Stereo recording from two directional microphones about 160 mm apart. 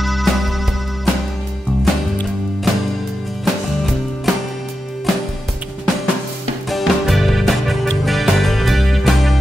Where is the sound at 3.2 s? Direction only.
Centre (ahead or behind).